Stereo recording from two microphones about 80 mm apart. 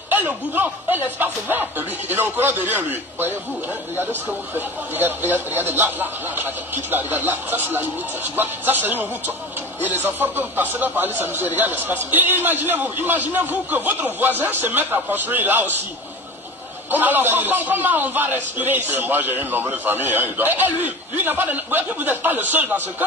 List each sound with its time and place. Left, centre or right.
0.1 s a man's voice: right
16.9 s a man's voice: right